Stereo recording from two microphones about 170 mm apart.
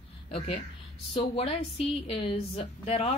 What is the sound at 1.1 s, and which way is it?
A woman's voice, 35° left (ahead or behind).